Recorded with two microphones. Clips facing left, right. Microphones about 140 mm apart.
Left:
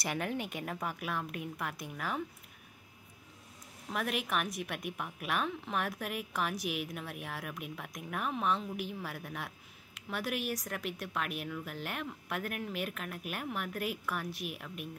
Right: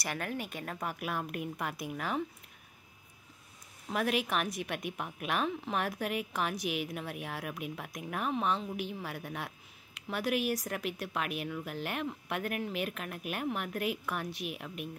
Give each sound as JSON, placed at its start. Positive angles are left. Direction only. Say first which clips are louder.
{"t": 0.0, "sound": "a woman's voice", "louder": "left 1 dB", "side_deg": 20}
{"t": 0.7, "sound": "a woman's voice", "louder": "right 3 dB", "side_deg": -5}
{"t": 3.9, "sound": "a woman's voice", "louder": "right 3 dB", "side_deg": 0}